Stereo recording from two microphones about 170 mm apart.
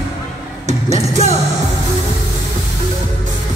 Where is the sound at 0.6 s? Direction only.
40° right (ahead or behind).